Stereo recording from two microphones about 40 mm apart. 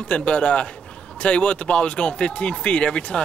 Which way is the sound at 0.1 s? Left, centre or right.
Left.